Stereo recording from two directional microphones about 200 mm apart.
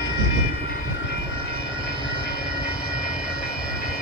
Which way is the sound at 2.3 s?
50° right (ahead or behind).